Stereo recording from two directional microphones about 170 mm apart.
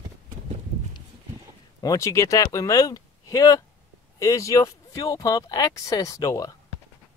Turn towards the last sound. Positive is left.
turn(degrees=20)  # may be behind; listen again after turning